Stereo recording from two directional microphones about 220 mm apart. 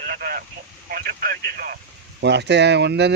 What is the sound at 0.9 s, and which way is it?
Speech, 40° right (ahead or behind).